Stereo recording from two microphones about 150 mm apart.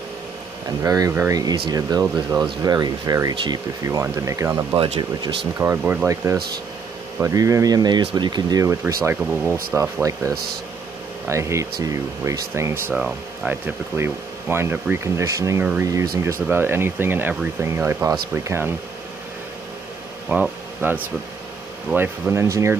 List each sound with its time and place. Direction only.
0.8 s speech: 20° right (ahead or behind)
4.7 s speech: 40° right (ahead or behind)
5.6 s speech: 15° right (ahead or behind)
11.2 s speech: 20° right (ahead or behind)
12.9 s speech: 5° right (ahead or behind)
20.2 s speech: 5° right (ahead or behind)